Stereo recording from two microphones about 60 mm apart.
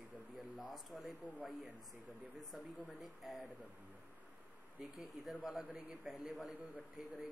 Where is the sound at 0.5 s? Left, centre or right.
Centre.